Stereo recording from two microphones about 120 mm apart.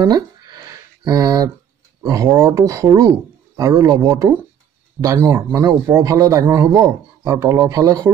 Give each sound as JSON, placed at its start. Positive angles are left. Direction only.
{"t": 1.0, "sound": "speech", "side_deg": -30}